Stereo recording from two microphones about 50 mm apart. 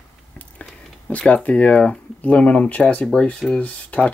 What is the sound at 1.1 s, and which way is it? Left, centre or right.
Speech, left.